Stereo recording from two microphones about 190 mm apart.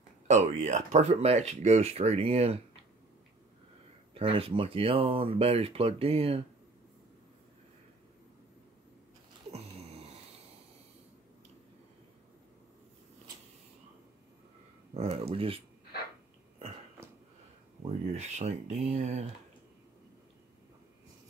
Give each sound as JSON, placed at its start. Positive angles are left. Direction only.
{"t": 0.3, "sound": "speech", "side_deg": -40}
{"t": 4.1, "sound": "speech", "side_deg": -30}
{"t": 9.5, "sound": "a sound", "side_deg": -35}
{"t": 15.0, "sound": "speech", "side_deg": -35}
{"t": 18.1, "sound": "speech", "side_deg": -35}